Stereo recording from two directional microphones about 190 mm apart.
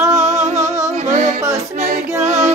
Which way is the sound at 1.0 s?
40° right (ahead or behind).